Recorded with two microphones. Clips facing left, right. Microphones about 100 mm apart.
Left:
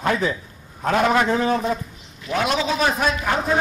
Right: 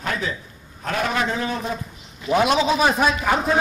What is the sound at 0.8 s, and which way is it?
Speech, 40° left (ahead or behind).